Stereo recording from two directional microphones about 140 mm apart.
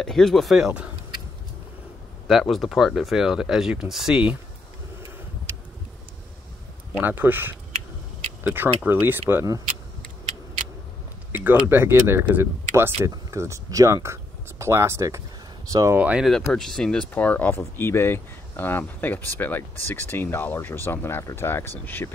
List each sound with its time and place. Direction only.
0.0 s speech: 5° left (ahead or behind)
2.2 s speech: centre (ahead or behind)
7.0 s speech: 15° right (ahead or behind)
11.3 s speech: 15° right (ahead or behind)
16.0 s speech: 10° right (ahead or behind)
16.3 s speech: centre (ahead or behind)